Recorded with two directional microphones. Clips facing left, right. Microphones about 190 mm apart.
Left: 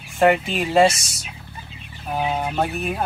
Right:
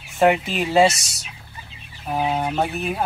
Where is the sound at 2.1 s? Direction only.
Centre (ahead or behind).